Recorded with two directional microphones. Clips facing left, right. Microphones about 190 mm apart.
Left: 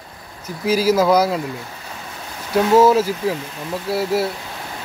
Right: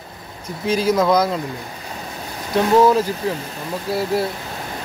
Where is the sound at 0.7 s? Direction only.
5° left (ahead or behind).